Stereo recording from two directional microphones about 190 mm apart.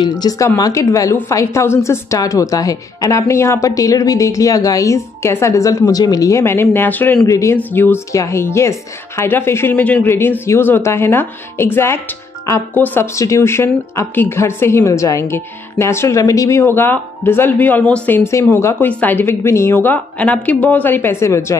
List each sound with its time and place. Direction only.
0.0 s speech: 20° left (ahead or behind)